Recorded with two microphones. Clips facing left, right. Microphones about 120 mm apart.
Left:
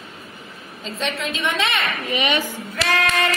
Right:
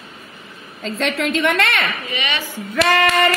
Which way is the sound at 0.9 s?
90° right.